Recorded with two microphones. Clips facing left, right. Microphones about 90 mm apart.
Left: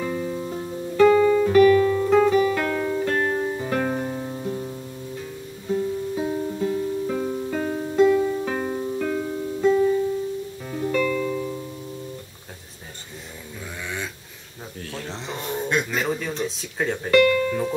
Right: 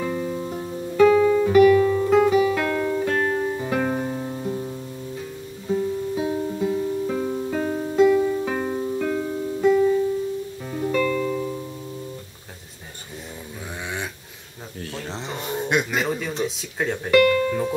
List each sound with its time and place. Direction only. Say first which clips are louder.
0.0 s music: right 1 dB; 5° right (ahead or behind)
7.9 s music: right 1 dB; 15° right (ahead or behind)
8.2 s music: right 1 dB; centre (ahead or behind)
10.7 s music: right 1 dB; 10° right (ahead or behind)
15.0 s a sound: right 1 dB; 15° right (ahead or behind)
16.1 s a sound: right 1 dB; centre (ahead or behind)
17.1 s music: right 1 dB; 10° right (ahead or behind)